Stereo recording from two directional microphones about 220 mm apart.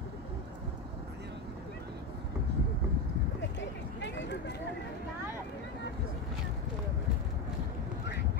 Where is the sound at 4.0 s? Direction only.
55° left (ahead or behind).